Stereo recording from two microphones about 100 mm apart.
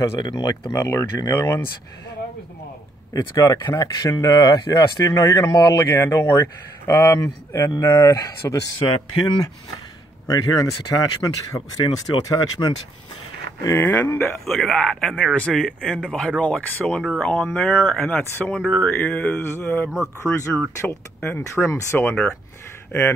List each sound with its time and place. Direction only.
0.2 s speech: 45° left (ahead or behind)
3.1 s speech: 35° left (ahead or behind)
5.6 s speech: 40° left (ahead or behind)
5.9 s speech: 25° left (ahead or behind)
7.9 s speech: 35° left (ahead or behind)
8.7 s speech: 50° left (ahead or behind)
10.2 s speech: 40° left (ahead or behind)
11.7 s speech: 45° left (ahead or behind)
13.6 s speech: 30° left (ahead or behind)
14.3 s speech: 5° left (ahead or behind); by 22.0 s 30° left (ahead or behind)
22.0 s speech: 15° left (ahead or behind)